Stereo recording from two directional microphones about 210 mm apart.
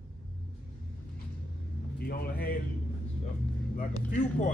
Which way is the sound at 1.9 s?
45° left (ahead or behind).